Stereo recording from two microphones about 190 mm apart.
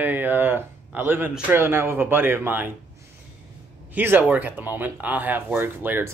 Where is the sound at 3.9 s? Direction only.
10° right (ahead or behind).